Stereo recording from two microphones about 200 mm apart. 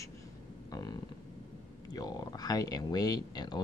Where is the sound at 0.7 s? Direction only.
20° left (ahead or behind).